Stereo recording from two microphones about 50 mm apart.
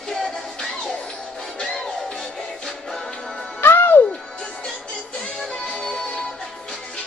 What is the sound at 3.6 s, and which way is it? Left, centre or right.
Music, left.